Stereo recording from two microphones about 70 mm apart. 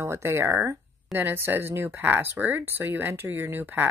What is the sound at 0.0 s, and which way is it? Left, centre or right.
Speech, right.